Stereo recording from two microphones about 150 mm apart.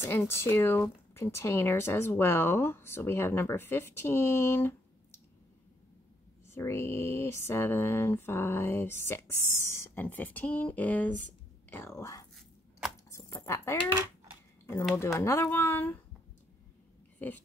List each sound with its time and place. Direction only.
0.0 s speech: 15° left (ahead or behind)
6.5 s speech: 15° left (ahead or behind)
15.1 s speech: 20° left (ahead or behind)